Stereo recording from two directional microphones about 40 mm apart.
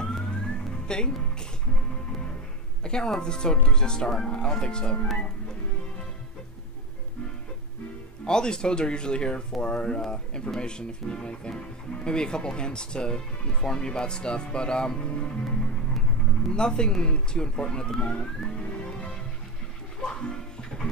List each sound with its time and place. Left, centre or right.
0.0 s music: centre
0.8 s speech: centre
2.8 s a woman's voice: centre
8.3 s speech: centre
18.4 s music: centre